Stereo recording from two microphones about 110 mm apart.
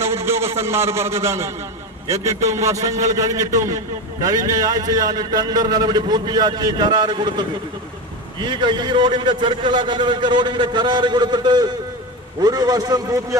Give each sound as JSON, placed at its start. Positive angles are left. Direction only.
{"t": 0.0, "sound": "a man's voice", "side_deg": -25}